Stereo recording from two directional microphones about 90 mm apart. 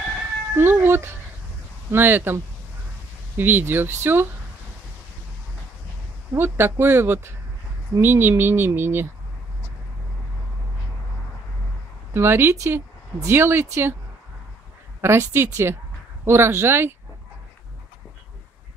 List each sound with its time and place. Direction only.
0.6 s speech: 25° right (ahead or behind)
6.3 s speech: 25° right (ahead or behind)
12.1 s speech: 25° right (ahead or behind)
15.0 s speech: 30° right (ahead or behind)